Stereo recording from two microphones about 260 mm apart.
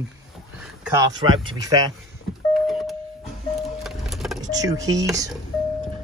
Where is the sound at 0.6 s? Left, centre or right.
Centre.